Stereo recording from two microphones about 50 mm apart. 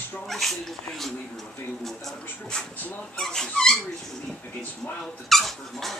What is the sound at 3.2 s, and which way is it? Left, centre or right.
Dog, centre.